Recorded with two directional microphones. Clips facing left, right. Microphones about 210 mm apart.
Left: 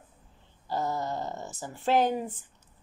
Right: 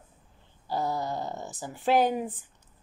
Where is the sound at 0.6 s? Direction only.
Centre (ahead or behind).